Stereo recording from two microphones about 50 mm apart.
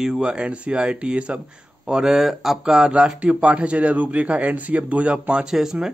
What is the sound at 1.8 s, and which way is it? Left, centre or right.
Speech, centre.